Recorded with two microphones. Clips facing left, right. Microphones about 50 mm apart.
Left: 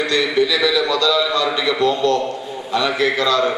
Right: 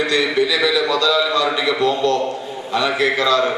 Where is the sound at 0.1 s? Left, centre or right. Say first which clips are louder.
Even; centre.